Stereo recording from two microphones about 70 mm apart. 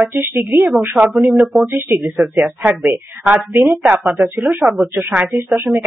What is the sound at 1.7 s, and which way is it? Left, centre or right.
Speech, right.